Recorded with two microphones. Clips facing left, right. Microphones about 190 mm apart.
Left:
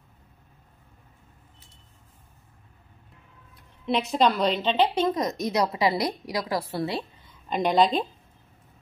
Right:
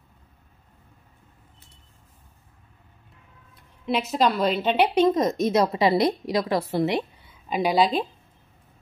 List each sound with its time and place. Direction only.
3.8 s a woman's voice: centre (ahead or behind)
4.6 s a woman's voice: 15° right (ahead or behind)
7.2 s a woman's voice: 5° right (ahead or behind)